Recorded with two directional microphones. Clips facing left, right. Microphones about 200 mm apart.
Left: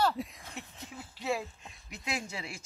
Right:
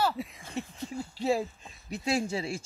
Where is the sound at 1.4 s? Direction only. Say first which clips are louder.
Right 7 dB; centre (ahead or behind).